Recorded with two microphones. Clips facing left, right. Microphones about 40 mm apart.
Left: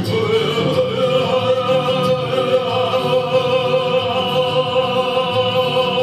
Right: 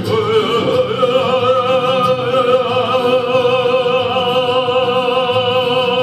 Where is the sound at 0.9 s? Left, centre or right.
Right.